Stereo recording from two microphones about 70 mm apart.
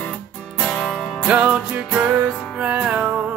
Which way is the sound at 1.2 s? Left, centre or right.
Centre.